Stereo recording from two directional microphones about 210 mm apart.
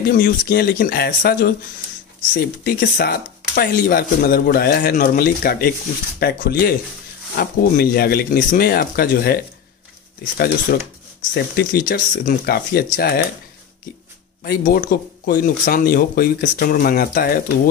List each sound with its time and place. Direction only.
0.1 s speech: 45° left (ahead or behind)
2.6 s speech: 50° left (ahead or behind)
14.4 s speech: 45° left (ahead or behind)